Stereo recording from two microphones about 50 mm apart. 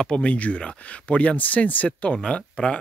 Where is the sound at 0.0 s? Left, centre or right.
Left.